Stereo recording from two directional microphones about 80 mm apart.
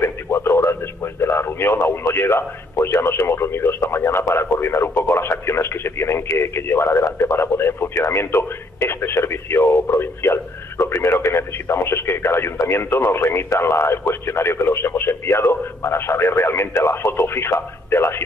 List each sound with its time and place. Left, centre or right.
0.0 s speech: left